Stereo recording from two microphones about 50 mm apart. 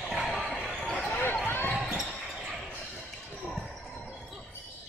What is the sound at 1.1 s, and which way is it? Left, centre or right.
Basketball bounce, left.